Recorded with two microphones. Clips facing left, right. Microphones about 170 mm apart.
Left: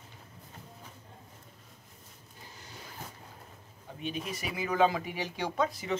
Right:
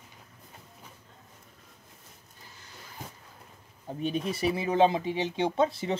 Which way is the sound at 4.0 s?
35° right (ahead or behind).